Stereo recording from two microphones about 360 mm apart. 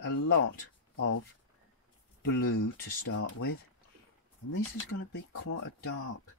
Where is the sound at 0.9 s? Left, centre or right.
Left.